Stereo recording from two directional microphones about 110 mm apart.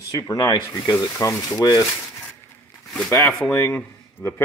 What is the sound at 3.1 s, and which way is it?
Speech, 20° left (ahead or behind).